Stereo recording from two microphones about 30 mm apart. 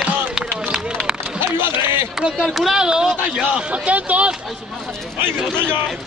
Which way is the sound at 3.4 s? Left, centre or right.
Right.